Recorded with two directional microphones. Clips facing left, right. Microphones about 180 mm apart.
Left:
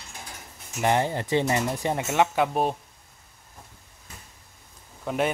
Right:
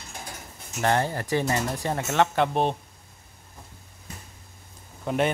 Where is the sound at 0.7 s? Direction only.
15° left (ahead or behind).